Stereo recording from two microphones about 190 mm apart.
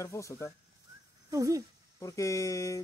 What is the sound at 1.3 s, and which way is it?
Speech, 15° right (ahead or behind).